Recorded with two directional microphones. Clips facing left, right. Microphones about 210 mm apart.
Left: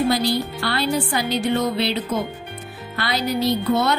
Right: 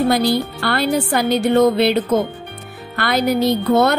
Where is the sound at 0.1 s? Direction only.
55° right (ahead or behind).